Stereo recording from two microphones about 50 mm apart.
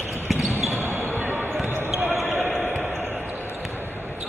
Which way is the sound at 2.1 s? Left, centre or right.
Centre.